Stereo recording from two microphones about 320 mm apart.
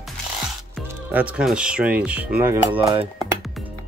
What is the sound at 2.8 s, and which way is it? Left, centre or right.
Speech, centre.